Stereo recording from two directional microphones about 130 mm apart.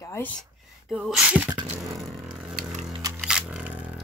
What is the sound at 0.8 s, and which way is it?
Speech, centre (ahead or behind).